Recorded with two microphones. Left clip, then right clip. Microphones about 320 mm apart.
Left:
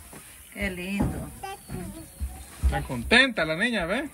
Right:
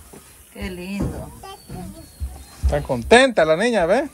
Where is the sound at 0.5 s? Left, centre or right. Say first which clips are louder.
Left 1 dB; centre.